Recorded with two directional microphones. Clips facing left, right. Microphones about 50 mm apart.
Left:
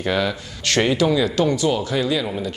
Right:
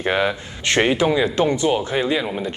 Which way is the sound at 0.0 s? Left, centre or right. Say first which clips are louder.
Right 2 dB; right.